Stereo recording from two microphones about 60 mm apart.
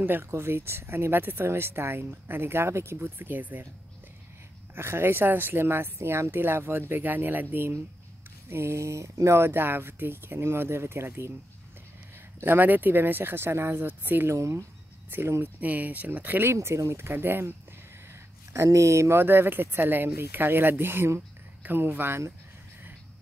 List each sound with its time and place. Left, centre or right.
0.0 s speech: right
4.7 s speech: right
12.4 s speech: right
14.3 s speech: right
15.1 s speech: right
16.6 s speech: right
17.0 s speech: right
18.5 s speech: right